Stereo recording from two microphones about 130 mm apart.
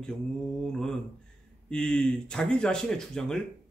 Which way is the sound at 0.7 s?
5° left (ahead or behind).